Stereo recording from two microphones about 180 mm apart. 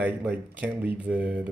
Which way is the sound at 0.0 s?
10° right (ahead or behind).